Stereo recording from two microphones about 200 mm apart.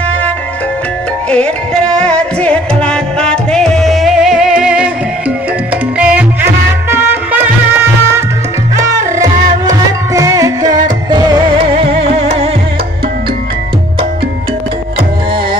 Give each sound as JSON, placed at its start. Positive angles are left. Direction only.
{"t": 1.3, "sound": "music", "side_deg": 5}
{"t": 5.9, "sound": "music", "side_deg": -5}